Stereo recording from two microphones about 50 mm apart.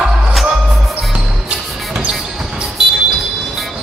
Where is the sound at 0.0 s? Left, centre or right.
Centre.